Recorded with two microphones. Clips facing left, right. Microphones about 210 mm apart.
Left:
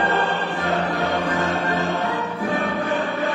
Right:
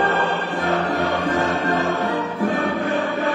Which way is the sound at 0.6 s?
Centre (ahead or behind).